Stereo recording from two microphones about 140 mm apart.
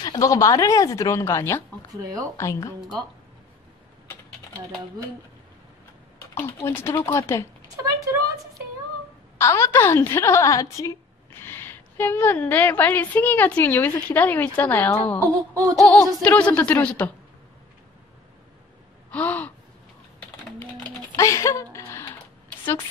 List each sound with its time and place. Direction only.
0.0 s speech: 25° left (ahead or behind)
6.3 s a woman's voice: 15° left (ahead or behind)
9.4 s a woman's voice: 20° left (ahead or behind)
15.1 s wail: 25° right (ahead or behind)
15.8 s a woman's voice: 10° left (ahead or behind)
19.0 s gasp: 10° left (ahead or behind)
21.1 s speech: 20° left (ahead or behind)
21.7 s a sound: 20° left (ahead or behind)